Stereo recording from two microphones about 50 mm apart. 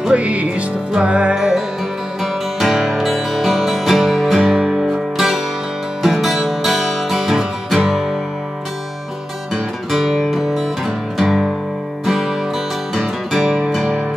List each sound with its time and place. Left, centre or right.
0.0 s music: right
2.6 s music: centre
4.6 s music: centre
4.8 s music: centre
9.8 s music: centre